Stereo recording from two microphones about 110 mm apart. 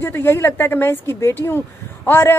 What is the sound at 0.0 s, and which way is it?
A woman's voice, 20° left (ahead or behind).